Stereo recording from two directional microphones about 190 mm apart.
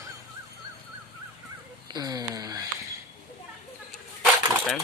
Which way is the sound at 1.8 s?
20° right (ahead or behind).